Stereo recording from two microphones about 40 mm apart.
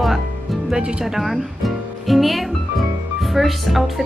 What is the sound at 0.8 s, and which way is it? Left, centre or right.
Speech, right.